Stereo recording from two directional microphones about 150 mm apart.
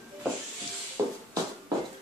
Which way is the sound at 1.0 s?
20° right (ahead or behind).